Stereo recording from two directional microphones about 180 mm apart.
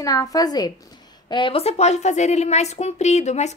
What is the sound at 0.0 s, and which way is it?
A woman's voice, 20° left (ahead or behind).